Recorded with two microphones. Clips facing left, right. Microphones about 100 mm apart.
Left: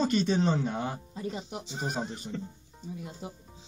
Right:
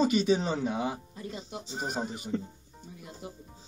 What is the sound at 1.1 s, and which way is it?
Speech, 20° left (ahead or behind).